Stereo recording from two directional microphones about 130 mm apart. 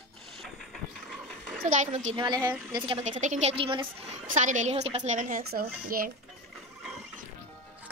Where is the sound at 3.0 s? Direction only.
75° right (ahead or behind).